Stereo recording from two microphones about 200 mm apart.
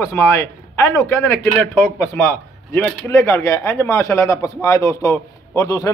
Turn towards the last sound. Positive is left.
turn(degrees=20)  # may be behind; listen again after turning